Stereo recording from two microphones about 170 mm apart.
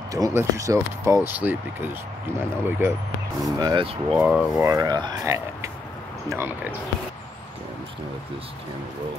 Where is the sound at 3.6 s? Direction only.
30° right (ahead or behind).